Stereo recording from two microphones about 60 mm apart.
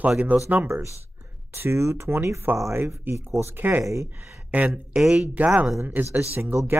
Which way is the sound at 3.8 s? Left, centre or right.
Right.